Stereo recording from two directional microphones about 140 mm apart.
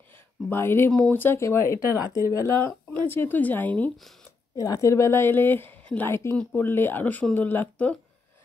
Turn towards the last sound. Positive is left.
turn(degrees=10)  # may be behind; listen again after turning